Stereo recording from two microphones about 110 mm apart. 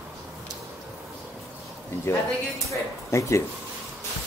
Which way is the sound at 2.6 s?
25° left (ahead or behind).